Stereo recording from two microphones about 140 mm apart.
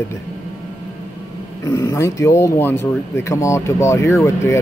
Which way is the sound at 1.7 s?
25° left (ahead or behind).